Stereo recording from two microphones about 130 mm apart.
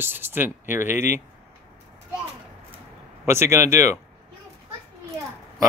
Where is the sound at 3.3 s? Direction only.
20° right (ahead or behind).